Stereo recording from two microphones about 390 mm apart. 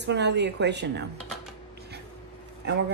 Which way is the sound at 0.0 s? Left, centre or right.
Right.